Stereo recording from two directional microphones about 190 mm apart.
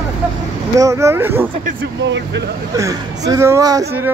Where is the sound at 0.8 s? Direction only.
15° right (ahead or behind).